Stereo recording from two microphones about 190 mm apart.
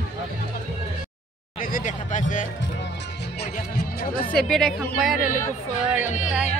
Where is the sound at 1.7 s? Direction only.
40° left (ahead or behind).